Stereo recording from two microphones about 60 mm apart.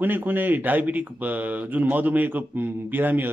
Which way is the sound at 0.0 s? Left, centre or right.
Right.